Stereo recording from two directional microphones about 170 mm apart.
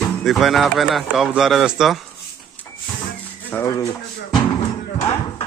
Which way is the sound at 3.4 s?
15° left (ahead or behind).